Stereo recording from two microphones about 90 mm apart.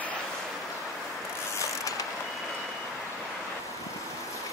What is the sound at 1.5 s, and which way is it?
Mechanisms, 35° left (ahead or behind).